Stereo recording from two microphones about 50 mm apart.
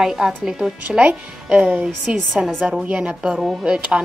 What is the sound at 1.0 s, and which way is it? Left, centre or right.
Speech, right.